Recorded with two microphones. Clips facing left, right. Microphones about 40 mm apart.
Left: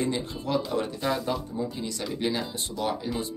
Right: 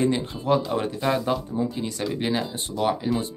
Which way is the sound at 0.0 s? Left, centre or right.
Right.